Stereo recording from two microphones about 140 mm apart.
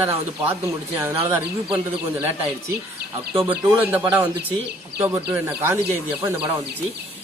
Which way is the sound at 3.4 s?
10° right (ahead or behind).